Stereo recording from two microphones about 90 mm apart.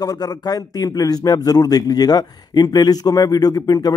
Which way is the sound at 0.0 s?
45° left (ahead or behind).